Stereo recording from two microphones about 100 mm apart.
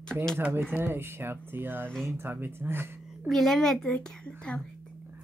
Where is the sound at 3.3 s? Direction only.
5° left (ahead or behind).